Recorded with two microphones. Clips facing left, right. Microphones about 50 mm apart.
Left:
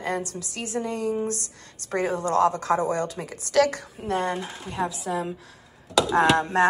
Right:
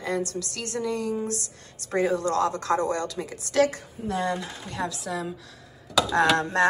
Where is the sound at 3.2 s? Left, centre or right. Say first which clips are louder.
Left 1 dB; left.